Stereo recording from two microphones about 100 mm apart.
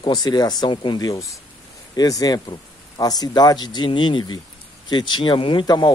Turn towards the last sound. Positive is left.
turn(degrees=45)  # may be behind; listen again after turning